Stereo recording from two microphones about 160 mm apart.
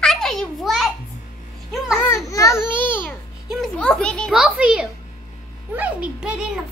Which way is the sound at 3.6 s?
5° left (ahead or behind).